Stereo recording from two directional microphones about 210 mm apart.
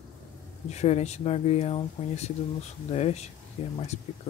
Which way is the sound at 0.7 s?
30° left (ahead or behind).